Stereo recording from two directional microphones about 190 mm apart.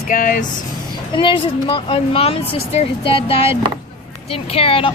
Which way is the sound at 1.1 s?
25° left (ahead or behind).